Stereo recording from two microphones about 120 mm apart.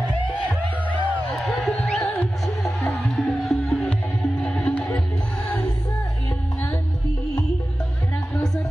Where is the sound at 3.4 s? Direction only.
Centre (ahead or behind).